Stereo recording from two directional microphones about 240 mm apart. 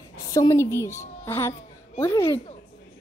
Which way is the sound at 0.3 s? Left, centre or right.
Centre.